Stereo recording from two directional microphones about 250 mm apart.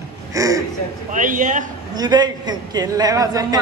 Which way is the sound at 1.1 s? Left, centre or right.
Right.